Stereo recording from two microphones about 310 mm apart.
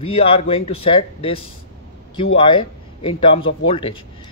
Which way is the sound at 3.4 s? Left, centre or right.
Left.